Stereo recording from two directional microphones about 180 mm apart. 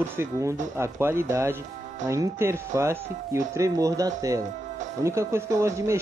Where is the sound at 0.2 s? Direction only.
15° right (ahead or behind).